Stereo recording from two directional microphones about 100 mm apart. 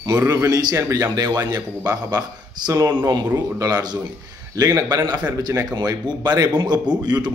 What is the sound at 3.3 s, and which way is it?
A man's voice, 40° right (ahead or behind).